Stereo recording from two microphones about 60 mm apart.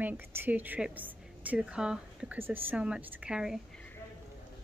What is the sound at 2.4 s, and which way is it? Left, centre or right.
Speech, right.